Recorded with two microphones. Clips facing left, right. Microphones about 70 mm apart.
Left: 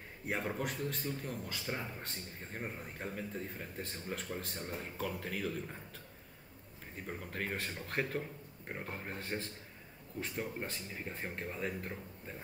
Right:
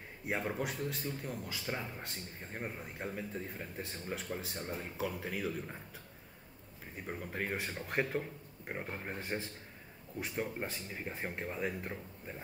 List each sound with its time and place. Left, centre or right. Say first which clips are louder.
0.3 s a man's voice: right 1 dB; centre
7.1 s speech: right 2 dB; centre
10.7 s speech: right 1 dB; centre